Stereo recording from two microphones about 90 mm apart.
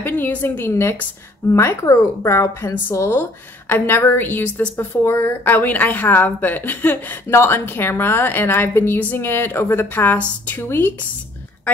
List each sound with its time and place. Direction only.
0.0 s speech: 20° left (ahead or behind)